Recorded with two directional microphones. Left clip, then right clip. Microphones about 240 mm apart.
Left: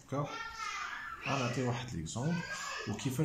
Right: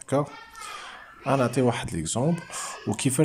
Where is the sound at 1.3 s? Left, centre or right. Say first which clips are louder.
Right 13 dB; right.